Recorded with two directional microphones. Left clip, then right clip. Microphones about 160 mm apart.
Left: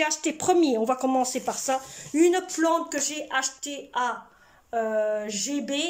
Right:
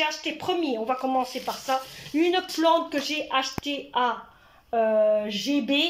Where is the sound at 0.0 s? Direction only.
20° left (ahead or behind).